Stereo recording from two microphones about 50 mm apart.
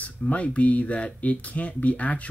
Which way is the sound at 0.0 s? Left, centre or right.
Left.